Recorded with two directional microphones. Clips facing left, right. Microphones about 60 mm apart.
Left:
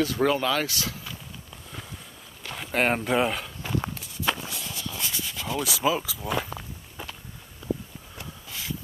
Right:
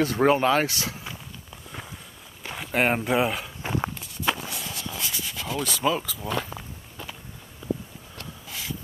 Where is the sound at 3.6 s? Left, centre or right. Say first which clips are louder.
Right 2 dB; right.